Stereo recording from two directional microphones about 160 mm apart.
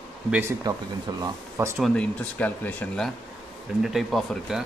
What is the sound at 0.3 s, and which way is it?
A man's voice, 15° right (ahead or behind).